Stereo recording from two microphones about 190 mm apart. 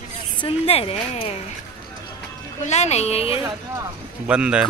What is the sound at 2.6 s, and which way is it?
Speech, 35° left (ahead or behind).